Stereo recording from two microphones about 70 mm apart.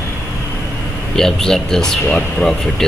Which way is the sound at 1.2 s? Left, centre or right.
Centre.